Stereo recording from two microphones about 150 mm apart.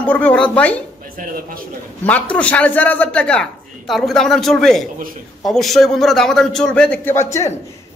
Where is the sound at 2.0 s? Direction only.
10° left (ahead or behind).